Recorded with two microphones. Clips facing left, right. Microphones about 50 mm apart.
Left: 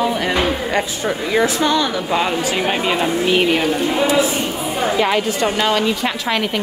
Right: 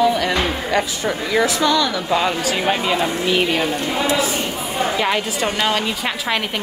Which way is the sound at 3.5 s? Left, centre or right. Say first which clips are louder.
Left 3 dB; centre.